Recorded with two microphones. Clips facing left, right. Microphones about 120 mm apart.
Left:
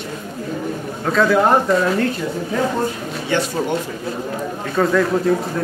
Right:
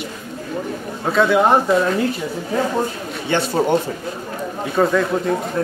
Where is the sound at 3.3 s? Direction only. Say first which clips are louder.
Right 3 dB; 35° right (ahead or behind).